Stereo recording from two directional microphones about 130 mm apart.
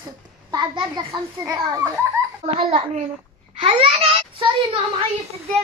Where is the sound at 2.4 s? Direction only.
50° right (ahead or behind).